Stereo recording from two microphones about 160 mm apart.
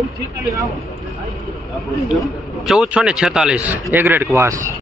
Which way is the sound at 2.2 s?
5° right (ahead or behind).